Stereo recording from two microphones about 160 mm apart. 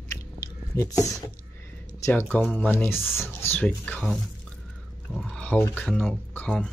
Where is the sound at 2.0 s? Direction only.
15° left (ahead or behind).